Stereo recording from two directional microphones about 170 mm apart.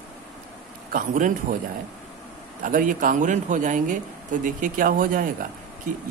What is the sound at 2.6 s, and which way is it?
A man's voice, 50° right (ahead or behind).